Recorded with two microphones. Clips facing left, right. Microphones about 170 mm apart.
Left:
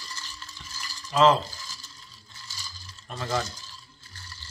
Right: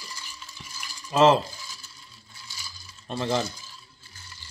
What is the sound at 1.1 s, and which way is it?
Mechanisms, 25° right (ahead or behind).